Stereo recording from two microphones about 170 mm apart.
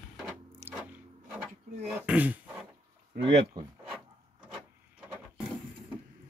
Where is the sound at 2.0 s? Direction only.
10° right (ahead or behind).